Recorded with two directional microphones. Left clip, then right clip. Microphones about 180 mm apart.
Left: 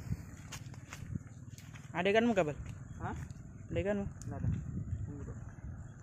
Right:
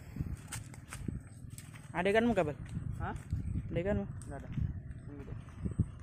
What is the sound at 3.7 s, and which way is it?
Speech, 5° right (ahead or behind).